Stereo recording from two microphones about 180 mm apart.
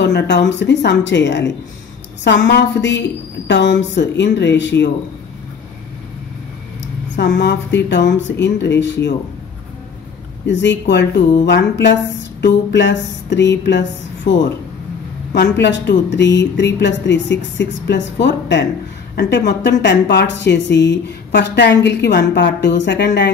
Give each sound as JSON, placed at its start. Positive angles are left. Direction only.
{"t": 0.0, "sound": "a sound", "side_deg": 70}
{"t": 0.5, "sound": "a woman's voice", "side_deg": 75}
{"t": 7.2, "sound": "a woman's voice", "side_deg": 70}
{"t": 10.4, "sound": "a woman's voice", "side_deg": 80}
{"t": 15.3, "sound": "a woman's voice", "side_deg": 75}